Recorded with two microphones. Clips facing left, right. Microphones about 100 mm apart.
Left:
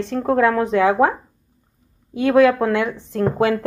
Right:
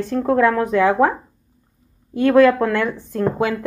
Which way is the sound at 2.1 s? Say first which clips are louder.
Right 1 dB; 15° left (ahead or behind).